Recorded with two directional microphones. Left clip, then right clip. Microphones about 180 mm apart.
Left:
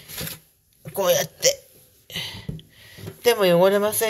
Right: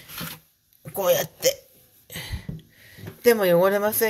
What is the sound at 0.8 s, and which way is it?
Speech, 25° right (ahead or behind).